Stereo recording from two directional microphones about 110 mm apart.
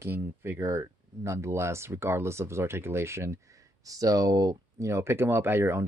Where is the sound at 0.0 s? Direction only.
20° right (ahead or behind).